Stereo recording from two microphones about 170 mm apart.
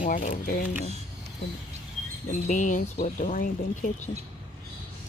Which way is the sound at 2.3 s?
50° left (ahead or behind).